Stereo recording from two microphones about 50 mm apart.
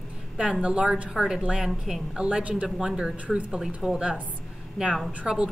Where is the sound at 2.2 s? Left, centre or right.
Right.